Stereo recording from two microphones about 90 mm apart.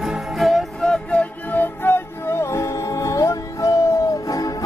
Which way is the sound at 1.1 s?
20° left (ahead or behind).